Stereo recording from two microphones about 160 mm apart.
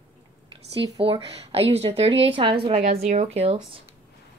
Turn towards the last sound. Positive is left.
turn(degrees=-35)  # may be behind; listen again after turning